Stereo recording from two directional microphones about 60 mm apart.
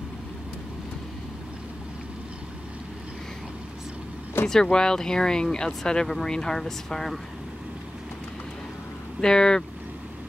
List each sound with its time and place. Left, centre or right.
4.5 s speech: centre
9.2 s speech: centre